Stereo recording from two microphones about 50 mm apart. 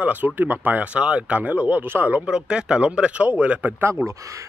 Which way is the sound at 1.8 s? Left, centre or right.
Right.